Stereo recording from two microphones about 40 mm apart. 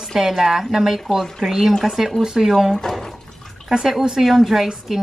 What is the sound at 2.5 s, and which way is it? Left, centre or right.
Speech, centre.